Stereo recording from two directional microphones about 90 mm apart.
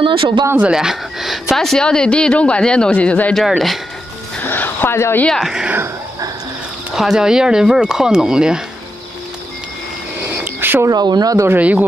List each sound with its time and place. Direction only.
0.0 s speech: 75° right (ahead or behind)
0.7 s speech: 5° right (ahead or behind); by 3.3 s 15° left (ahead or behind)
3.3 s speech: centre (ahead or behind)
4.4 s a sound: 20° left (ahead or behind)
5.4 s speech: 5° right (ahead or behind)
7.0 s speech: 5° right (ahead or behind)
10.4 s a sound: 25° right (ahead or behind)
10.9 s speech: 50° right (ahead or behind)
11.5 s speech: 20° right (ahead or behind)